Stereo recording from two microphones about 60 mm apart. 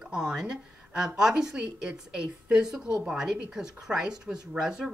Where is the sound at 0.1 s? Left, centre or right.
Centre.